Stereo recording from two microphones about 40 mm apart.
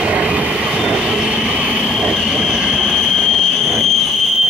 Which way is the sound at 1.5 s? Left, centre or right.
Right.